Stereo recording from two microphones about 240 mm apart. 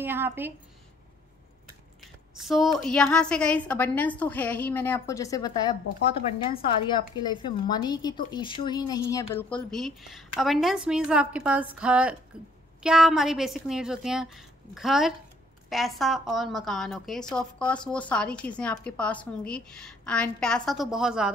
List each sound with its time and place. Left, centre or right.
0.0 s a woman's voice: centre
2.0 s speech: centre
6.9 s speech: centre